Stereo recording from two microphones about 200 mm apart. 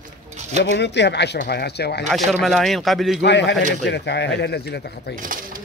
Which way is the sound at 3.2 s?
60° left (ahead or behind).